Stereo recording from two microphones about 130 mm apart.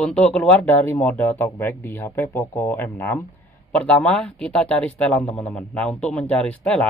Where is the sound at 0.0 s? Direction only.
5° left (ahead or behind).